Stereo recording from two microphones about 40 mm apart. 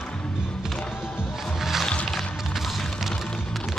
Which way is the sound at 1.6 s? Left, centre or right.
Centre.